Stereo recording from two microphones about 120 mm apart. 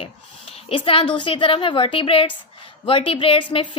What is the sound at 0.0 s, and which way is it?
A woman's voice, 50° left (ahead or behind).